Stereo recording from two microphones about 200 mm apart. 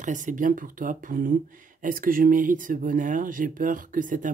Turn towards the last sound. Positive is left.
turn(degrees=-40)  # may be behind; listen again after turning